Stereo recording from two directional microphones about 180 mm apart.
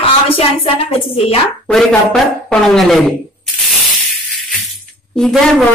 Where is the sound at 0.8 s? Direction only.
30° left (ahead or behind).